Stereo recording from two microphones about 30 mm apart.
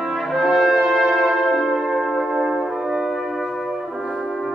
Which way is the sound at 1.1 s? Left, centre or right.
Centre.